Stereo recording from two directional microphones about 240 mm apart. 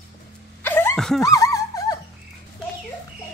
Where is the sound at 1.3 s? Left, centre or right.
Centre.